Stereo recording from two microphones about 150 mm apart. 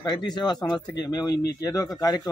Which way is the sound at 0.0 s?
30° left (ahead or behind).